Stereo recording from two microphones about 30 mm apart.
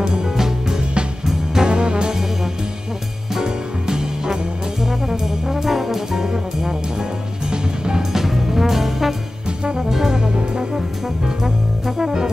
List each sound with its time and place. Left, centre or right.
0.0 s music: centre
1.7 s brass instrument: right
3.3 s music: right
5.6 s brass instrument: centre
7.5 s music: right
8.1 s brass instrument: centre
9.8 s music: centre
10.1 s brass instrument: right
12.0 s brass instrument: right